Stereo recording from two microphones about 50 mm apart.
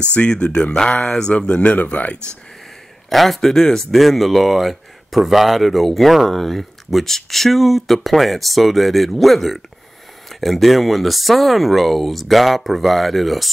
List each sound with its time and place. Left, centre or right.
0.1 s speech: left
1.5 s speech: left
3.1 s speech: centre